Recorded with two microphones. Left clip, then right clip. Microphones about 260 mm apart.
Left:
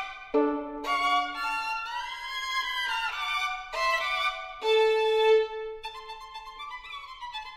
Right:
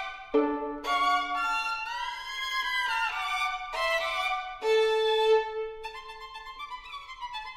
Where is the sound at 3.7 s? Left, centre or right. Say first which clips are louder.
Left 3 dB; left.